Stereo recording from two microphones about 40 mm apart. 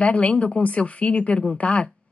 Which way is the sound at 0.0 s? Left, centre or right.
Left.